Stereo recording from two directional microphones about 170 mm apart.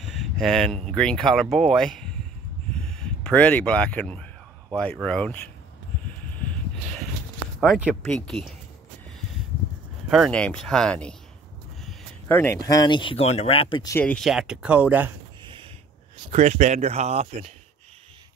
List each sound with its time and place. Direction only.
0.0 s a sound: centre (ahead or behind)
0.8 s speech: 5° left (ahead or behind)
2.7 s a sound: 5° left (ahead or behind)
5.0 s speech: 5° left (ahead or behind)
6.2 s a sound: 10° left (ahead or behind)
7.6 s speech: centre (ahead or behind)
10.0 s speech: centre (ahead or behind)
12.3 s speech: 10° left (ahead or behind); by 13.8 s 30° left (ahead or behind)
13.8 s speech: 10° left (ahead or behind); by 15.1 s 10° right (ahead or behind)
16.3 s speech: 40° right (ahead or behind)